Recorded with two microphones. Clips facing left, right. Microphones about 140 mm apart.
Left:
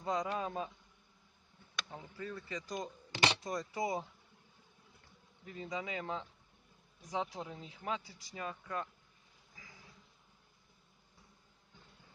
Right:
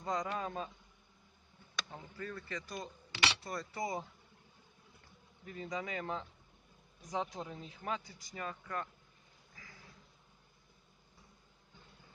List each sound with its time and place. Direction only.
0.0 s speech: 10° left (ahead or behind)
1.9 s speech: 10° left (ahead or behind)
3.1 s a sound: 40° left (ahead or behind)
3.3 s speech: 15° left (ahead or behind)
5.5 s speech: 10° left (ahead or behind)